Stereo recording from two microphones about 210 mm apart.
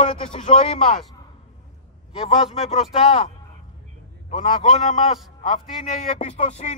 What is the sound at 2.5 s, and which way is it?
Speech, 30° left (ahead or behind).